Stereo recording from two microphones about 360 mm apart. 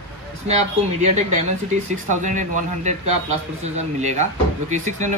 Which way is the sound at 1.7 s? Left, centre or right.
Centre.